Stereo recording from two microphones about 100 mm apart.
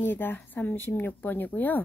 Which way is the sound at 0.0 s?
20° left (ahead or behind).